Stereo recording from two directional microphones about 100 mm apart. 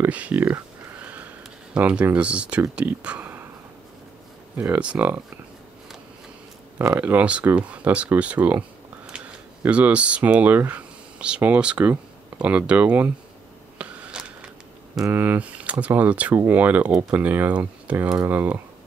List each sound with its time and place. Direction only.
0.0 s a sound: 15° right (ahead or behind)
2.7 s speech: 10° right (ahead or behind)
4.6 s speech: 15° right (ahead or behind)
7.0 s speech: 15° right (ahead or behind)
13.7 s a sound: 10° right (ahead or behind)
15.1 s speech: 15° right (ahead or behind)